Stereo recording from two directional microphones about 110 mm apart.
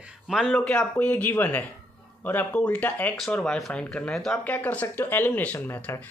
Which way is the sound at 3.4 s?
Centre (ahead or behind).